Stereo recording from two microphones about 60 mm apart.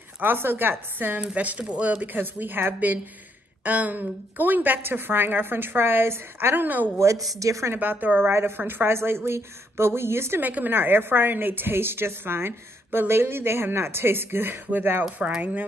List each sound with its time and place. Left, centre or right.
0.2 s a woman's voice: right
7.0 s a woman's voice: right
7.7 s a woman's voice: right
8.2 s a woman's voice: right
10.4 s a woman's voice: right